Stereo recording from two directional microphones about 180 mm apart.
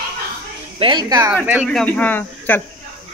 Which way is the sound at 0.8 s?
25° right (ahead or behind).